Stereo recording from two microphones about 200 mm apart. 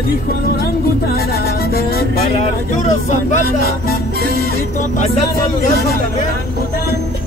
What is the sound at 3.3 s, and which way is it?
Music, 50° left (ahead or behind).